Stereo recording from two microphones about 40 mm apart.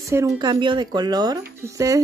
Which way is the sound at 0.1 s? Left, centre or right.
Right.